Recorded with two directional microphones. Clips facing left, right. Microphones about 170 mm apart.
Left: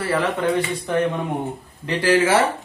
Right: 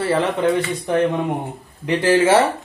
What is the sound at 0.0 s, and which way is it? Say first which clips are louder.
Speech: right 3 dB; 25° right (ahead or behind).